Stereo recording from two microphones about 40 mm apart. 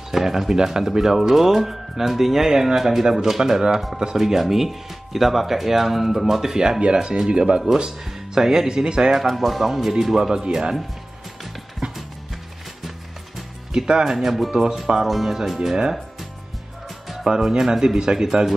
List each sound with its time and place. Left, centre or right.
0.1 s speech: centre
9.2 s speech: centre
11.8 s music: right
13.7 s speech: centre
15.0 s speech: centre
17.3 s speech: centre